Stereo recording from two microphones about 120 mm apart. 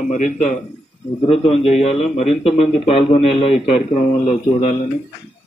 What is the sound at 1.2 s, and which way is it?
Speech, 55° left (ahead or behind).